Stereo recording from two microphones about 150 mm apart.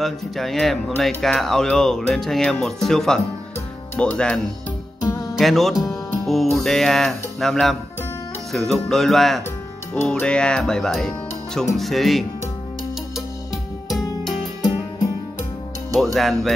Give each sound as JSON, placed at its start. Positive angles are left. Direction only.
{"t": 0.0, "sound": "speech", "side_deg": 0}
{"t": 5.4, "sound": "speech", "side_deg": 0}
{"t": 13.8, "sound": "music", "side_deg": 0}
{"t": 14.6, "sound": "music", "side_deg": 25}
{"t": 15.9, "sound": "speech", "side_deg": 0}